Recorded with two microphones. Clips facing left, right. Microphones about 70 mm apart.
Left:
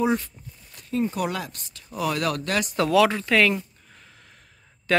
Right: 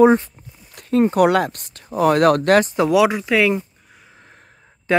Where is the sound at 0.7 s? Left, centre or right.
Right.